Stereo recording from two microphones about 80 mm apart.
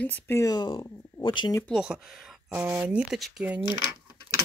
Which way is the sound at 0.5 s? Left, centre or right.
Left.